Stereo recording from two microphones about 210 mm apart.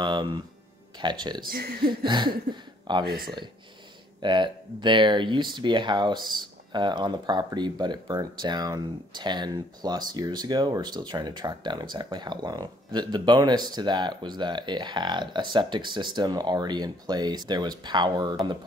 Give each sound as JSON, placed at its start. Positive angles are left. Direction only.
{"t": 0.0, "sound": "speech", "side_deg": -20}
{"t": 1.5, "sound": "speech", "side_deg": -50}
{"t": 2.0, "sound": "speech", "side_deg": -20}
{"t": 3.1, "sound": "speech", "side_deg": -45}
{"t": 4.2, "sound": "speech", "side_deg": -20}